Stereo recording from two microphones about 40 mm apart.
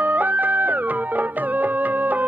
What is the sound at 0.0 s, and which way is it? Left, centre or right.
Music, right.